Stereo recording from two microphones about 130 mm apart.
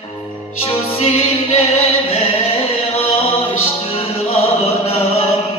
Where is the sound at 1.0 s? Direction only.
50° left (ahead or behind).